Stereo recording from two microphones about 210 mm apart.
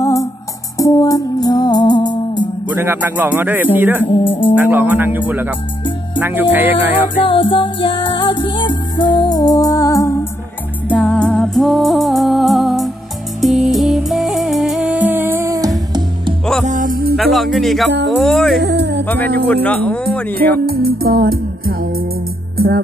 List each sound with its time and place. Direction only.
0.0 s music: 15° left (ahead or behind)
2.7 s music: 10° right (ahead or behind)
4.1 s speech: 25° left (ahead or behind)
4.6 s music: 10° right (ahead or behind)
7.2 s music: 25° left (ahead or behind)
10.9 s music: 5° left (ahead or behind); by 15.7 s 15° right (ahead or behind)
16.6 s music: 40° right (ahead or behind)
17.2 s music: centre (ahead or behind)
18.0 s speech: centre (ahead or behind)
18.6 s music: 50° right (ahead or behind)
19.0 s speech: 10° left (ahead or behind)
20.6 s music: 45° right (ahead or behind)